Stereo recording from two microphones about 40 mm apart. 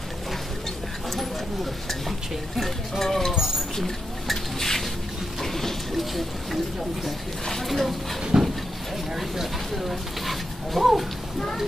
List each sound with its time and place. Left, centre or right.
1.1 s speech: centre
5.4 s a sound: centre
7.4 s speech: centre
8.3 s speech: centre